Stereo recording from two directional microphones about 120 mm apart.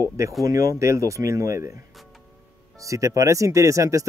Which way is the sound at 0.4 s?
30° right (ahead or behind).